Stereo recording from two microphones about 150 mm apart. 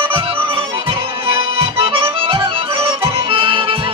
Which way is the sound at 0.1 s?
35° right (ahead or behind).